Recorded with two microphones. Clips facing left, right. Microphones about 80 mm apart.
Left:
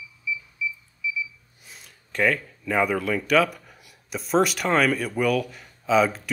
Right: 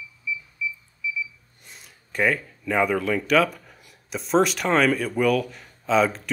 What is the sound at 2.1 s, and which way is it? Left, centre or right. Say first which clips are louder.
Speech: even; centre.